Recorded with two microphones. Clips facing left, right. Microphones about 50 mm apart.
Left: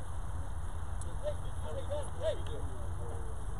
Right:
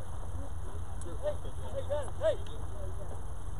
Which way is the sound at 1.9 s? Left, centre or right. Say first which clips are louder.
Right 5 dB; right.